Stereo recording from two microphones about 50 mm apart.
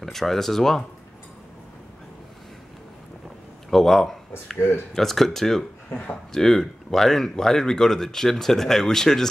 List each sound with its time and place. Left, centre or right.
0.0 s speech: centre
3.7 s speech: centre
4.6 s speech: left
4.9 s speech: centre